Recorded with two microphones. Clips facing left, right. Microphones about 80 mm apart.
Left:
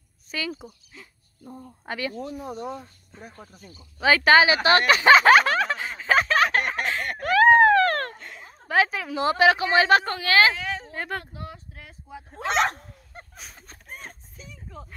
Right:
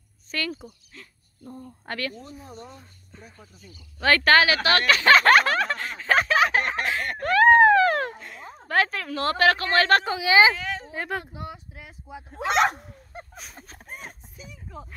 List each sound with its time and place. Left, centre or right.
0.3 s a woman's voice: centre
2.2 s speech: left
3.2 s speech: left
4.0 s a sound: centre
8.6 s a woman's voice: centre
10.0 s a woman's voice: centre
11.3 s a sound: centre